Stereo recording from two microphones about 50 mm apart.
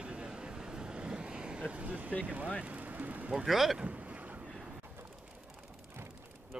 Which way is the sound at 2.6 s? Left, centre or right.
Right.